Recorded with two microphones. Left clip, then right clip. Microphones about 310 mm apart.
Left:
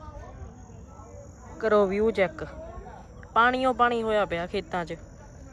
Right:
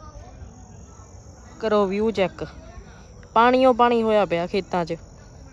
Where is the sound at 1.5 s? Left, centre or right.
Centre.